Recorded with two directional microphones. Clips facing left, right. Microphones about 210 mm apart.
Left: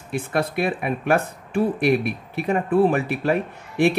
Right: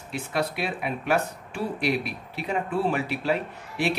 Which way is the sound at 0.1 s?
50° left (ahead or behind).